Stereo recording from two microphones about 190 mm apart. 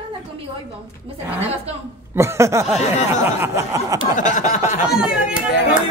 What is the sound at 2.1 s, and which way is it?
Snicker, 15° right (ahead or behind).